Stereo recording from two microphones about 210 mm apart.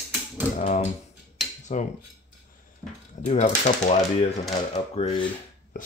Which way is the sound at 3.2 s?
35° left (ahead or behind).